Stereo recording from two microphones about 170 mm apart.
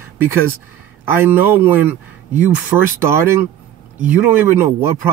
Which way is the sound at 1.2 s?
10° right (ahead or behind).